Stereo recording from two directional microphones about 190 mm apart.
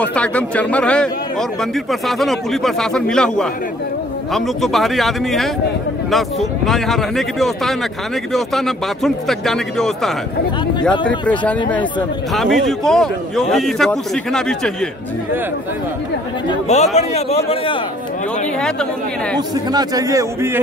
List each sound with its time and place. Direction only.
0.0 s a man's voice: 5° left (ahead or behind)
16.6 s speech: 35° left (ahead or behind)
19.3 s a man's voice: 20° right (ahead or behind)